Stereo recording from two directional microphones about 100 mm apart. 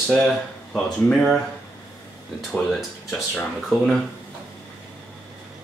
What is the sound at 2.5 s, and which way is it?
Speech, centre (ahead or behind).